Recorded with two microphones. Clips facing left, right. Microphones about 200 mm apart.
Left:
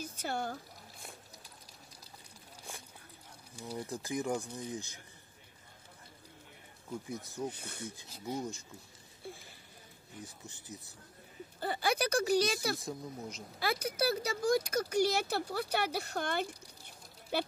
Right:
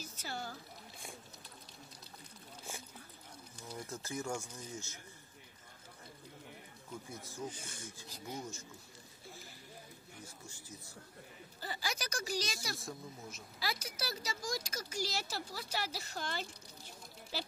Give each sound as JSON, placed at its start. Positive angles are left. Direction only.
{"t": 0.0, "sound": "speech", "side_deg": 55}
{"t": 3.5, "sound": "speech", "side_deg": 10}
{"t": 7.1, "sound": "speech", "side_deg": 20}
{"t": 7.3, "sound": "speech", "side_deg": 65}
{"t": 10.2, "sound": "speech", "side_deg": 20}
{"t": 11.6, "sound": "speech", "side_deg": 55}
{"t": 12.7, "sound": "speech", "side_deg": 20}
{"t": 13.6, "sound": "speech", "side_deg": 55}